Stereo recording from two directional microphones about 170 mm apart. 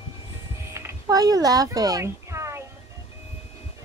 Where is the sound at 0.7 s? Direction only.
20° right (ahead or behind).